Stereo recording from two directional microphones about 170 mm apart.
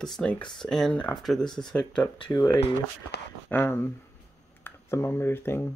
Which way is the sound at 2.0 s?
30° left (ahead or behind).